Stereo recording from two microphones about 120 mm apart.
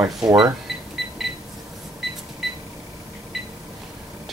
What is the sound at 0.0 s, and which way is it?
Speech, 30° right (ahead or behind).